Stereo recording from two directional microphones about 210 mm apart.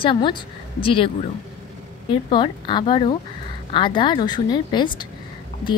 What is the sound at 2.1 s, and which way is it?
Speech, 20° left (ahead or behind).